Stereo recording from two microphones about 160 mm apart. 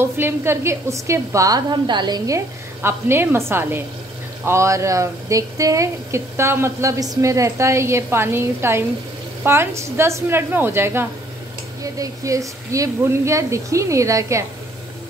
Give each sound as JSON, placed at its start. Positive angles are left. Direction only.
{"t": 0.0, "sound": "a woman's voice", "side_deg": -15}